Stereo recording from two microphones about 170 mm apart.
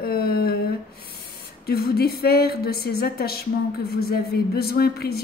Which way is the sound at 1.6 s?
65° left (ahead or behind).